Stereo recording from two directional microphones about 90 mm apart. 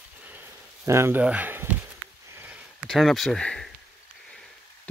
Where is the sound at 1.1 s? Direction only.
15° right (ahead or behind).